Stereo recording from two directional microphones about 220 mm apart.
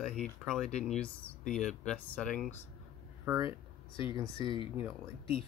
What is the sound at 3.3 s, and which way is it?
Speech, 15° right (ahead or behind).